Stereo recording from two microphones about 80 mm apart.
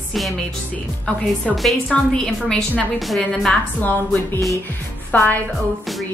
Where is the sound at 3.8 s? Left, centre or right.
Left.